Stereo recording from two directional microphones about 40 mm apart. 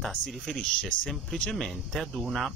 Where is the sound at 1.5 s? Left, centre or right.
Centre.